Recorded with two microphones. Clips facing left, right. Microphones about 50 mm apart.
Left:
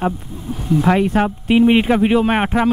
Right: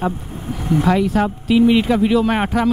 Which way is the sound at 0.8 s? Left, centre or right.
Left.